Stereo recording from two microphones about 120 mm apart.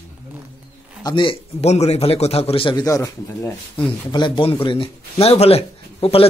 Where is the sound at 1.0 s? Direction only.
45° left (ahead or behind).